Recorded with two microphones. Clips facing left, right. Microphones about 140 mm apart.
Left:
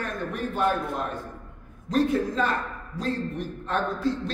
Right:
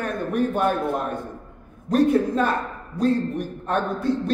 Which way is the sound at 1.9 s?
55° right (ahead or behind).